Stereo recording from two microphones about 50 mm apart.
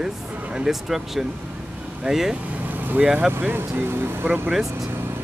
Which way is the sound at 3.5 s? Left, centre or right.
Right.